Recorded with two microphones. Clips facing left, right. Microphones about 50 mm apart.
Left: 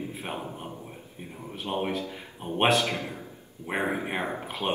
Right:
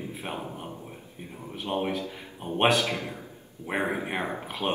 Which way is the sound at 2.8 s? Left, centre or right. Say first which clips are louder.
Even; left.